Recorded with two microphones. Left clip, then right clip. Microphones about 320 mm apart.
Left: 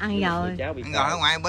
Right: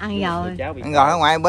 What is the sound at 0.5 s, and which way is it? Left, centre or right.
Speech, centre.